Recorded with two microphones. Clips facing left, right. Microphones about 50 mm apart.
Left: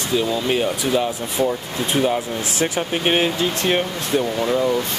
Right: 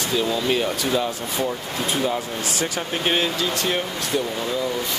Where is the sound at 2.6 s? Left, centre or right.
Left.